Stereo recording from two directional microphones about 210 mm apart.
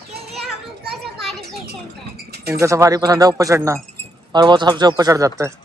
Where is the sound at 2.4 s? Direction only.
15° right (ahead or behind).